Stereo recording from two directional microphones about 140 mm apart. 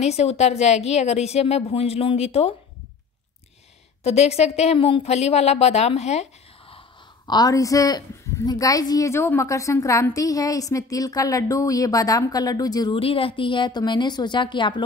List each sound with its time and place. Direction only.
0.0 s a woman's voice: 50° left (ahead or behind)
4.0 s a woman's voice: 50° left (ahead or behind)
5.1 s a woman's voice: 50° left (ahead or behind)
7.2 s a woman's voice: 25° left (ahead or behind)
12.9 s a woman's voice: 40° left (ahead or behind)